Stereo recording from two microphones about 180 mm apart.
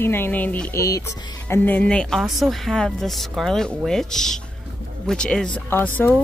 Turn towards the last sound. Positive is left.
turn(degrees=10)  # may be behind; listen again after turning